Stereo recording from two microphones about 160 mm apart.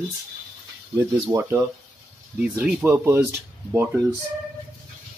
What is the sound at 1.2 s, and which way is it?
Speech, 15° right (ahead or behind).